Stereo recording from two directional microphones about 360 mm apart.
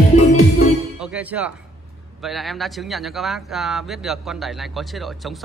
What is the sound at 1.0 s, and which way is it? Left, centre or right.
Speech, centre.